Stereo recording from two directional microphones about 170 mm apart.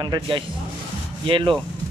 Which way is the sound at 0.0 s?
25° right (ahead or behind).